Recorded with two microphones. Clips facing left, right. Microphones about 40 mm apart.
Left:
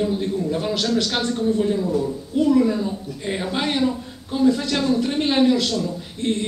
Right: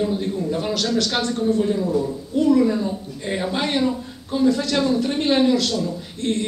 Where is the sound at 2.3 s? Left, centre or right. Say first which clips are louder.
Right 1 dB; centre.